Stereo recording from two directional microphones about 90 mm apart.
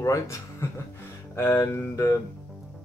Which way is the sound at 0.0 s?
35° left (ahead or behind).